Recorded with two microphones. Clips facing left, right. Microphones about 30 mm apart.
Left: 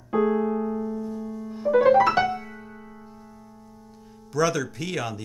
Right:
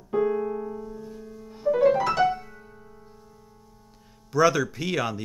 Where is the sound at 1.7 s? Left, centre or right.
Centre.